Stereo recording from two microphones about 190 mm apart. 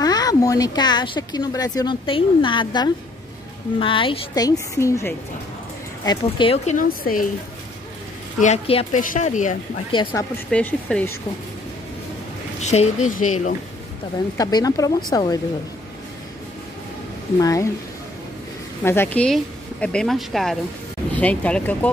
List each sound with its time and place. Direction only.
0.0 s speech: 20° left (ahead or behind)
6.0 s speech: 25° left (ahead or behind); by 7.2 s 45° left (ahead or behind)
8.4 s speech: 35° left (ahead or behind)
9.8 s speech: 25° left (ahead or behind)
10.3 s speech: 5° left (ahead or behind)
12.5 s a woman's voice: 35° left (ahead or behind)
14.3 s speech: 20° left (ahead or behind)
17.4 s speech: 20° left (ahead or behind)
18.9 s speech: 10° left (ahead or behind)